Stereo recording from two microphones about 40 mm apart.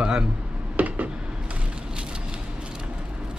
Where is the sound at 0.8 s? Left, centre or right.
Right.